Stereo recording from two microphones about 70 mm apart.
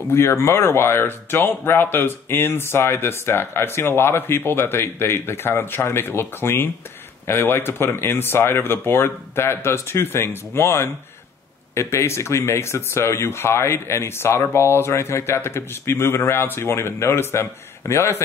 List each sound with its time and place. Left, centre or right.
0.1 s speech: left